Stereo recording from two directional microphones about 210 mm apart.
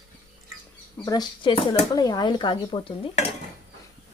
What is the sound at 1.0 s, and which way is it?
Speech, 20° left (ahead or behind).